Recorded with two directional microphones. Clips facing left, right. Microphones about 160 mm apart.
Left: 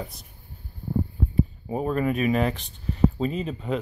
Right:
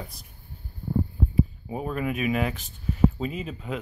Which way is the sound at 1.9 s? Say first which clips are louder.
Left 3 dB; 5° right (ahead or behind).